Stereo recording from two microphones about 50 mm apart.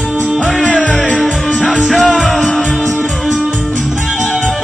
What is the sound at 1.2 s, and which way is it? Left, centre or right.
Music, centre.